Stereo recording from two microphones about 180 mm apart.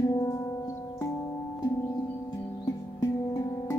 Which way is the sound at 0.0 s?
20° left (ahead or behind).